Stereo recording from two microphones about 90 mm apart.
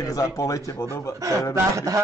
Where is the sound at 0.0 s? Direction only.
40° left (ahead or behind).